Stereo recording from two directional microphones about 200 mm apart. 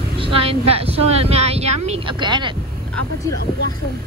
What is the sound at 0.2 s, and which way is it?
Speech, 25° right (ahead or behind).